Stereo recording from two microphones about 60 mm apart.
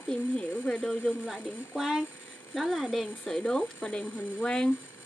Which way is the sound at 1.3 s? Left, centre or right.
Centre.